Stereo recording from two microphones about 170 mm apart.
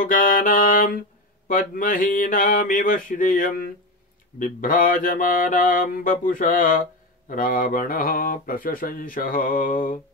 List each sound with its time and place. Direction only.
0.0 s mantra: 55° left (ahead or behind)